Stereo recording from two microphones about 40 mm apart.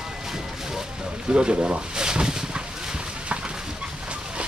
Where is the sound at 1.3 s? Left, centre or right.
Right.